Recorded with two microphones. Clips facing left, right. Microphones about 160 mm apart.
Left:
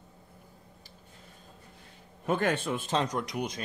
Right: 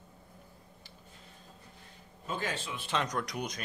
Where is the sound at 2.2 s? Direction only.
60° left (ahead or behind).